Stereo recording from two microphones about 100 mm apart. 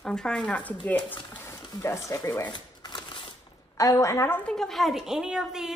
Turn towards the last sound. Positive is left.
turn(degrees=-5)  # may be behind; listen again after turning